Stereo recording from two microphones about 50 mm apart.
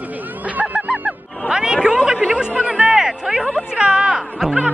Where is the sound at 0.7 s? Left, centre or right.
Right.